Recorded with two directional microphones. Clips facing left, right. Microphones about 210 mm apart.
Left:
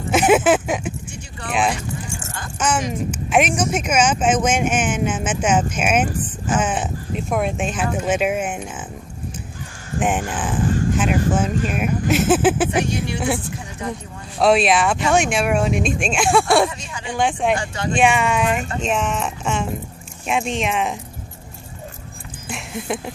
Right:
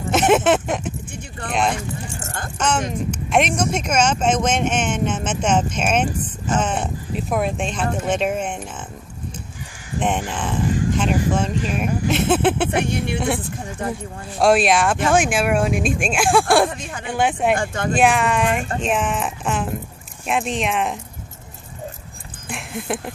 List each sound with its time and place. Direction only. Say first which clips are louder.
0.1 s a sound: left 1 dB; 5° left (ahead or behind)
2.1 s keys jangling: right 1 dB; 55° right (ahead or behind)
3.1 s speech: left 1 dB; 5° left (ahead or behind)
9.9 s speech: left 1 dB; 5° left (ahead or behind)
12.8 s speech: right 1 dB; 55° right (ahead or behind)
14.4 s speech: even; centre (ahead or behind)
16.6 s speech: right 1 dB; 55° right (ahead or behind)
17.1 s speech: even; 5° right (ahead or behind)
17.6 s speech: right 2 dB; 50° right (ahead or behind)
17.9 s speech: even; centre (ahead or behind)
22.5 s speech: even; centre (ahead or behind)